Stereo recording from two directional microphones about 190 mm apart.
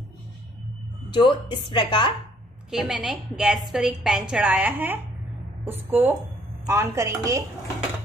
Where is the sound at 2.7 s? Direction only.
Centre (ahead or behind).